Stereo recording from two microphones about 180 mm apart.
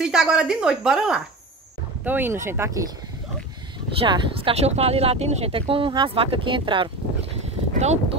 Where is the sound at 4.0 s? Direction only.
30° right (ahead or behind).